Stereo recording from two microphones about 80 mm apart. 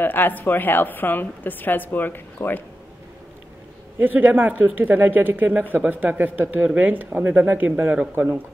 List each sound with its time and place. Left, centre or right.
0.0 s a woman's voice: left
4.0 s speech: right